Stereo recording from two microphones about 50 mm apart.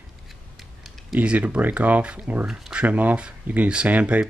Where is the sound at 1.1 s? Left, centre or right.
Right.